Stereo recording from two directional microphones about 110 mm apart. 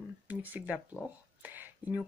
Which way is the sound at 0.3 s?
15° right (ahead or behind).